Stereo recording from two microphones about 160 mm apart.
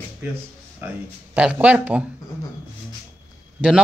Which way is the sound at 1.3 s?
5° right (ahead or behind).